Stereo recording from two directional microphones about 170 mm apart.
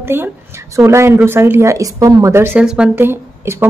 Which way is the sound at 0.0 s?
15° right (ahead or behind).